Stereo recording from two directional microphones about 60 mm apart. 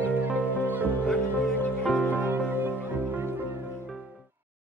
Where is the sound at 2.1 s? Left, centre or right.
Right.